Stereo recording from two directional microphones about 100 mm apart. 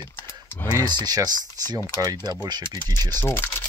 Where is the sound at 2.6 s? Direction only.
25° left (ahead or behind).